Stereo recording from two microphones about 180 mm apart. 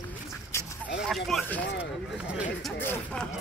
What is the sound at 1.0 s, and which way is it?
Speech, centre (ahead or behind).